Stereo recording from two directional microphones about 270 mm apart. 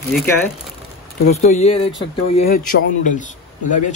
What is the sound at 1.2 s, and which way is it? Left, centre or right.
Speech, left.